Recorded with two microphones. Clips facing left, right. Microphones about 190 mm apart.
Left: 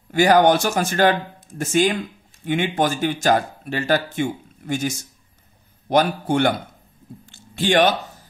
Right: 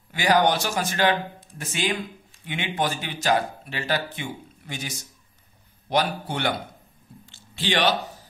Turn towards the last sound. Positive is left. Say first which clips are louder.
# left 6 dB
turn(degrees=50)  # may be behind; listen again after turning